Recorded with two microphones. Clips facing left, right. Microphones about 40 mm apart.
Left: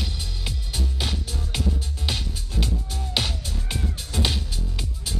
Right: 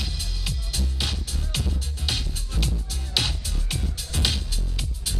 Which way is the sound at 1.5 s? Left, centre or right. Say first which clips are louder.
Left 3 dB; left.